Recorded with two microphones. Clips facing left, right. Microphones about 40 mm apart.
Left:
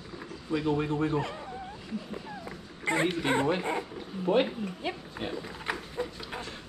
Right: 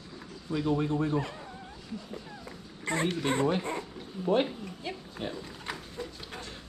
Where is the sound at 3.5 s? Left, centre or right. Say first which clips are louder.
Left 2 dB; left.